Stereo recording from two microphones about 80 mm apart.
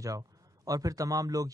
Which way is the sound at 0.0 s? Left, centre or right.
Right.